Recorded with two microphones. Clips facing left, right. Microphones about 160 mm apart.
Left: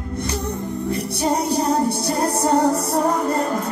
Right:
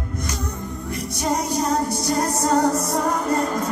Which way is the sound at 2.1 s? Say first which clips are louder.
Right 1 dB; 30° left (ahead or behind).